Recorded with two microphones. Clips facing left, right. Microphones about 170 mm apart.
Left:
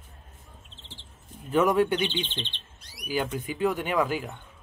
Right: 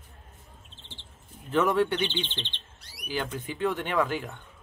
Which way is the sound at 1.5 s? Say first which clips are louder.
Left 2 dB; 10° left (ahead or behind).